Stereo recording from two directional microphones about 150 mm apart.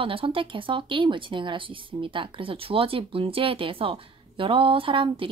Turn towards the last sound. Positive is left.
turn(degrees=-35)  # may be behind; listen again after turning